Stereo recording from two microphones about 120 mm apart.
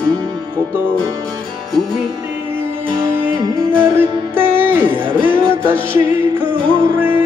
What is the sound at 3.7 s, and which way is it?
Music, 15° right (ahead or behind).